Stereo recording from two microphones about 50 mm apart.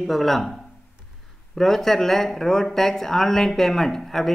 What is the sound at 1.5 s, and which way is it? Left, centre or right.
Speech, centre.